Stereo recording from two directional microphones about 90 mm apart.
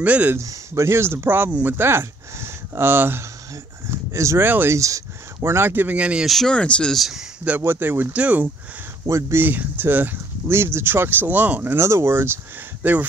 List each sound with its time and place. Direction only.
0.0 s speech: 15° right (ahead or behind)
0.4 s speech: 35° right (ahead or behind)
3.9 s a sound: 30° right (ahead or behind)
4.5 s speech: 20° right (ahead or behind)
4.7 s speech: 35° right (ahead or behind); by 6.2 s 10° right (ahead or behind)
6.2 s speech: 5° left (ahead or behind)
7.4 s speech: 20° right (ahead or behind)
9.0 s speech: 35° right (ahead or behind)
9.4 s speech: 20° right (ahead or behind)